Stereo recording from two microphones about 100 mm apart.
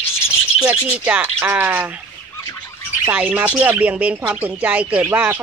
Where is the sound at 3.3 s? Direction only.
15° right (ahead or behind).